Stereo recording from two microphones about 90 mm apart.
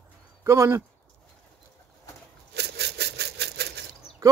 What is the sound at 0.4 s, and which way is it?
Speech, 30° right (ahead or behind).